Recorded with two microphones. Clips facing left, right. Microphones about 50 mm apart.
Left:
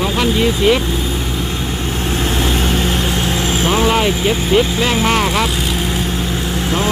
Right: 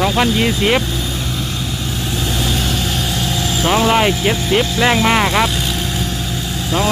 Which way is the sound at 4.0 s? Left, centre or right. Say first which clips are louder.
Even; centre.